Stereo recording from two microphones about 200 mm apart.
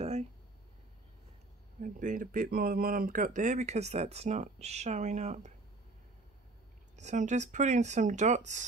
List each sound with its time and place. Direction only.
0.0 s a sound: 30° right (ahead or behind)
1.8 s speech: 40° right (ahead or behind)
7.0 s speech: 35° right (ahead or behind)